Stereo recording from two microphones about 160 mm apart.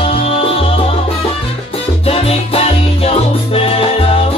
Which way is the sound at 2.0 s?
35° left (ahead or behind).